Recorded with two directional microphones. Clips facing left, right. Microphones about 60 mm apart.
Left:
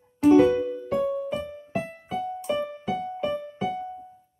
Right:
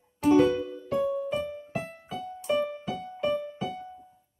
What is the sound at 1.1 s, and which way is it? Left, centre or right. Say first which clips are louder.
Music: left 1 dB; centre.